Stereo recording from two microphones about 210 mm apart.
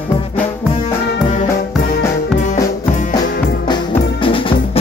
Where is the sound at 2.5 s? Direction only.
35° left (ahead or behind).